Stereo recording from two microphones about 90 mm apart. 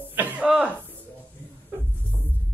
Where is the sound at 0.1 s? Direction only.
20° right (ahead or behind).